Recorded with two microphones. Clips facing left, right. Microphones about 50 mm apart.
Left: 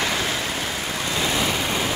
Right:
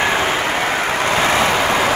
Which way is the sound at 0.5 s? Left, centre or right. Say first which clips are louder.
Right 9 dB; right.